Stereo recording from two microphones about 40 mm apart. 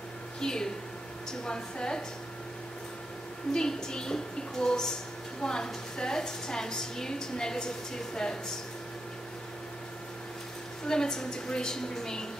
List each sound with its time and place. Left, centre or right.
0.4 s a woman's voice: centre
3.5 s a woman's voice: centre
10.9 s a woman's voice: centre